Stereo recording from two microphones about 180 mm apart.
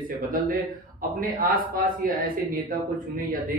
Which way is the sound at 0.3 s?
50° right (ahead or behind).